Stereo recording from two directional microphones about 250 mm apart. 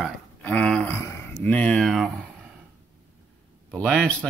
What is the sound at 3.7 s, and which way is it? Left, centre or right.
Speech, centre.